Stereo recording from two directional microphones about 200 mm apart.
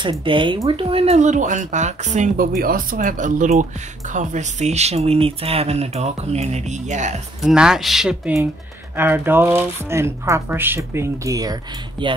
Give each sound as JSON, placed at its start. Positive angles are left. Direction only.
{"t": 0.0, "sound": "speech", "side_deg": -25}
{"t": 7.4, "sound": "speech", "side_deg": -5}